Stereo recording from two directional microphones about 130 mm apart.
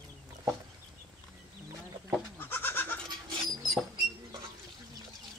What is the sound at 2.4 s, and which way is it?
Goat, 15° left (ahead or behind).